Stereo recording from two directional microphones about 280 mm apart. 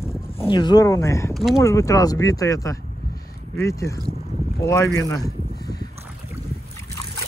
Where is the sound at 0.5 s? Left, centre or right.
Centre.